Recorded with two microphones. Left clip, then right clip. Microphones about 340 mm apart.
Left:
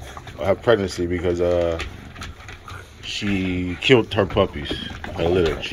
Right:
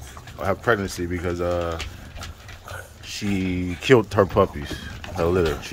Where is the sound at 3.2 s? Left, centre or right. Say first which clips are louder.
Left 2 dB; centre.